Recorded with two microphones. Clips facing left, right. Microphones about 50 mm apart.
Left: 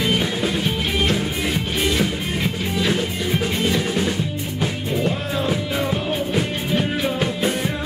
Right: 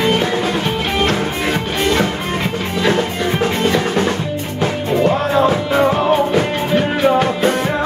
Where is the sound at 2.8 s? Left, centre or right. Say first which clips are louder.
Right 7 dB; right.